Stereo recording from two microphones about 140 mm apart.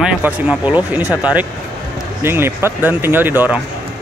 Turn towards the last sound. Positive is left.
turn(degrees=-15)  # may be behind; listen again after turning